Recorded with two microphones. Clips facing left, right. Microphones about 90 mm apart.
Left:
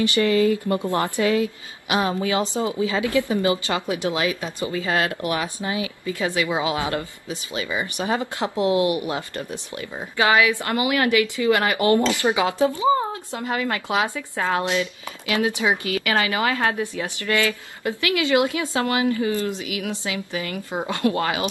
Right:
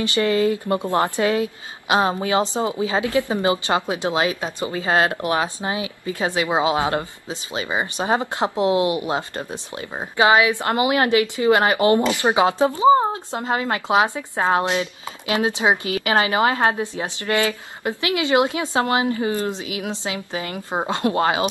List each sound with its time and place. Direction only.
0.1 s speech: 30° right (ahead or behind)